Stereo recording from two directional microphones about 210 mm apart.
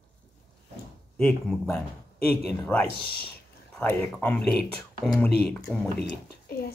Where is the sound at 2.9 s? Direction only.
45° left (ahead or behind).